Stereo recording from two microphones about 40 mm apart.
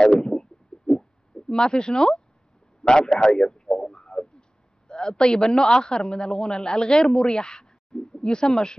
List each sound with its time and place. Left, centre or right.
0.0 s bird: centre
1.5 s a man's voice: centre